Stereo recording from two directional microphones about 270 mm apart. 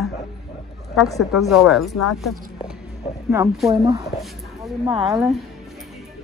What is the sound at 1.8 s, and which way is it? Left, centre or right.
Speech, left.